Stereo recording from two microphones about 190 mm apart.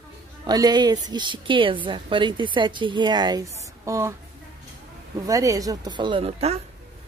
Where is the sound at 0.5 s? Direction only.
20° right (ahead or behind).